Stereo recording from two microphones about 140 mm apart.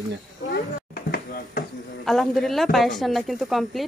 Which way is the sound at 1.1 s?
90° left.